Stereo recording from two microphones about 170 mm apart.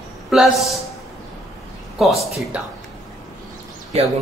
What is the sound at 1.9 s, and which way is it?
Speech, centre (ahead or behind).